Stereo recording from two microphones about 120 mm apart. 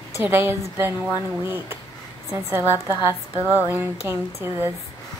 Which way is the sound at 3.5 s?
15° right (ahead or behind).